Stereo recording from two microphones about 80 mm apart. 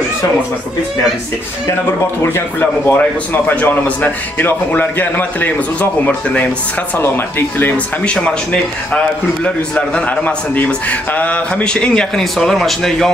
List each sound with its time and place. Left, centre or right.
2.3 s a man's voice: left
7.7 s a man's voice: centre